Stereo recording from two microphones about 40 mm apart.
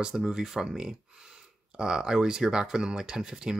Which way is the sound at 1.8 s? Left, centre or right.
Centre.